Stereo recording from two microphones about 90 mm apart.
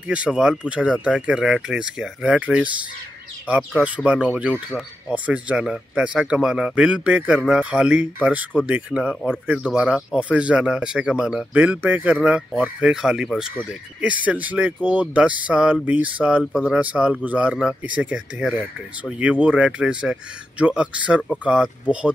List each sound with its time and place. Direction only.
0.1 s speech: 10° right (ahead or behind)
11.5 s speech: 20° right (ahead or behind)